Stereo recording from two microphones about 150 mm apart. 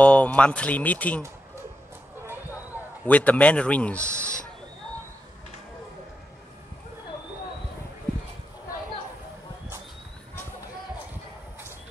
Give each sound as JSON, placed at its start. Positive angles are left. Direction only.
{"t": 0.0, "sound": "speech", "side_deg": 10}
{"t": 2.7, "sound": "a sound", "side_deg": -10}
{"t": 3.1, "sound": "speech", "side_deg": 10}